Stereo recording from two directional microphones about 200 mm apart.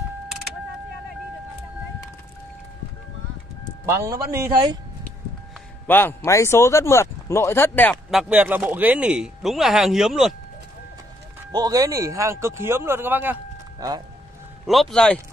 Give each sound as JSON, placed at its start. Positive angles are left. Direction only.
{"t": 3.8, "sound": "speech", "side_deg": -15}
{"t": 5.9, "sound": "speech", "side_deg": 10}
{"t": 8.1, "sound": "speech", "side_deg": -5}
{"t": 11.5, "sound": "speech", "side_deg": -20}
{"t": 14.7, "sound": "speech", "side_deg": 0}